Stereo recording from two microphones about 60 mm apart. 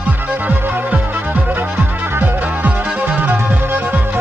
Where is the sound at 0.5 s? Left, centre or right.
Right.